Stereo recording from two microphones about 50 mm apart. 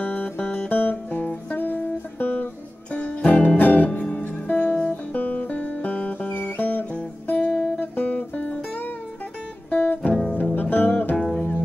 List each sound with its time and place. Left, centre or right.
0.0 s music: left
4.5 s music: left
7.4 s music: centre
7.8 s music: left
9.7 s music: left